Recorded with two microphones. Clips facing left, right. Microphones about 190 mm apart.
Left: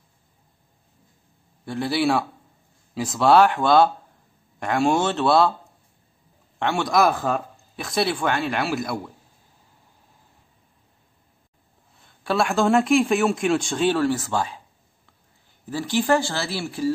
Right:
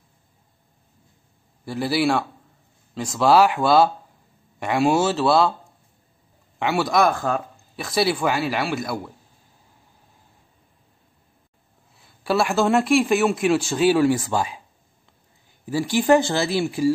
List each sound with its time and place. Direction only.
1.7 s speech: 5° right (ahead or behind)
6.6 s speech: 5° right (ahead or behind)
12.0 s speech: 5° right (ahead or behind)
15.6 s speech: 10° right (ahead or behind)